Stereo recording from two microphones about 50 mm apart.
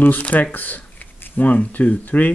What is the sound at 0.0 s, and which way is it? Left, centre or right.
Speech, left.